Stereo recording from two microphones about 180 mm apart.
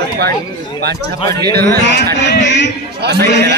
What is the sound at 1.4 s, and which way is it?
Speech, 65° right (ahead or behind).